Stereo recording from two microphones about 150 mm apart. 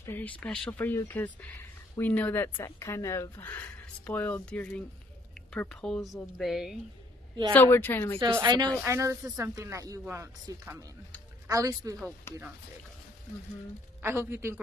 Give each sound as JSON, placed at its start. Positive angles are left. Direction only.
{"t": 0.0, "sound": "speech", "side_deg": 15}
{"t": 7.5, "sound": "speech", "side_deg": 15}
{"t": 8.3, "sound": "speech", "side_deg": -25}
{"t": 12.3, "sound": "speech", "side_deg": 15}
{"t": 14.0, "sound": "a man's voice", "side_deg": -15}